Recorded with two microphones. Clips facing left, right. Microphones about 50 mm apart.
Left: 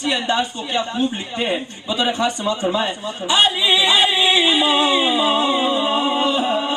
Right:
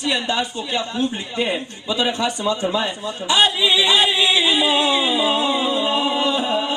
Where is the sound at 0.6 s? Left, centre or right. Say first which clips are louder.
Left 1 dB; left.